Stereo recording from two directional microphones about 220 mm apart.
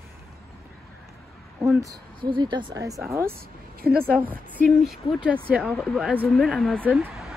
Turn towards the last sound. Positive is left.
turn(degrees=0)  # may be behind; listen again after turning